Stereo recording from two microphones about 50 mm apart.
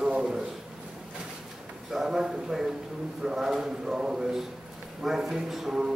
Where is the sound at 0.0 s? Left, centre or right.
Centre.